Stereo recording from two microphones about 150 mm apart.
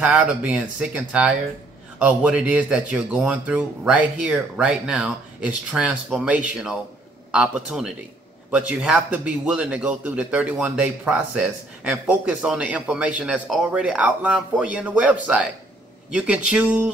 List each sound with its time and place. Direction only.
0.0 s a man's voice: 10° right (ahead or behind)